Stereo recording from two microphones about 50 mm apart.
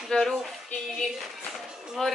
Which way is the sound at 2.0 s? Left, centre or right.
Centre.